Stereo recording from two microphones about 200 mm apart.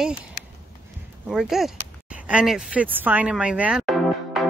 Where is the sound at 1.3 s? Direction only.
Centre (ahead or behind).